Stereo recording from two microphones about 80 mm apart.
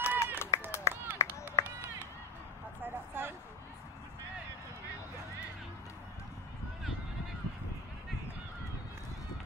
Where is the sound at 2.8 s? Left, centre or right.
Right.